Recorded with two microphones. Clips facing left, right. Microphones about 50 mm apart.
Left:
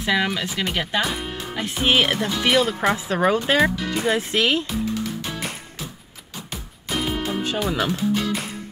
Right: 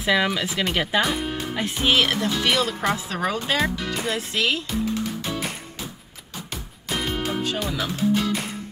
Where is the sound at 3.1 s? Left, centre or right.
Left.